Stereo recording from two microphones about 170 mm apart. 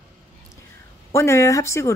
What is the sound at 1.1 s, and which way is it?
Speech, 15° left (ahead or behind).